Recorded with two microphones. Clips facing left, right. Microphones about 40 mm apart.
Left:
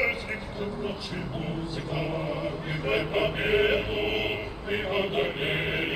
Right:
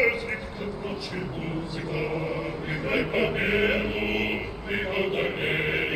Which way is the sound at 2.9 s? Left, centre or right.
Centre.